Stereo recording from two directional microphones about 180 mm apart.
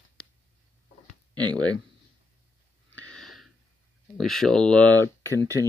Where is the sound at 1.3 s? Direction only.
25° right (ahead or behind).